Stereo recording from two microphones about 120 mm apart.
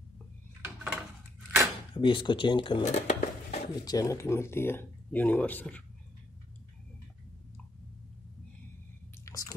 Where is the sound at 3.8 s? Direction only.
30° left (ahead or behind).